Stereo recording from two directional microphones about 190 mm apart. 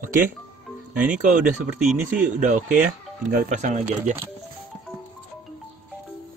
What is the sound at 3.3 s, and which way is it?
Speech, 45° right (ahead or behind).